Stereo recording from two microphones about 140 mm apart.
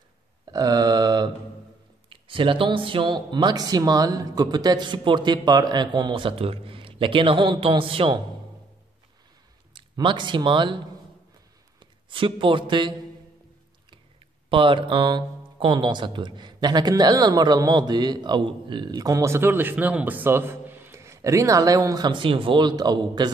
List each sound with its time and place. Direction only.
0.5 s a sound: 25° right (ahead or behind)
2.0 s speech: 40° right (ahead or behind)
9.8 s speech: 35° right (ahead or behind)
11.8 s a man's voice: 35° right (ahead or behind)
14.5 s speech: 35° right (ahead or behind)